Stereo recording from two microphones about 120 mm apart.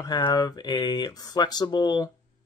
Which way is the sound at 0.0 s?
35° left (ahead or behind).